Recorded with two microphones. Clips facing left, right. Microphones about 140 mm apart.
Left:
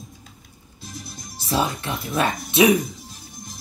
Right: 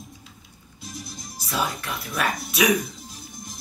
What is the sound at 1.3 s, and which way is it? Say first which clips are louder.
A man's voice: left 4 dB; 30° left (ahead or behind).